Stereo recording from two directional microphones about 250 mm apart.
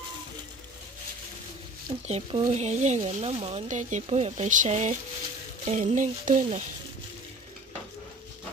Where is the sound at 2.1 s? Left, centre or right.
Right.